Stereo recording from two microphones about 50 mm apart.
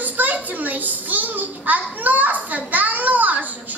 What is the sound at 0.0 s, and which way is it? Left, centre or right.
A child's voice, right.